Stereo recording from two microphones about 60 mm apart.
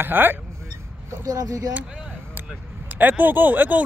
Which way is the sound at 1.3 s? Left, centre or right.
Right.